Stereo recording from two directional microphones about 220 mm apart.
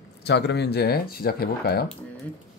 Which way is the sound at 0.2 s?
50° left (ahead or behind).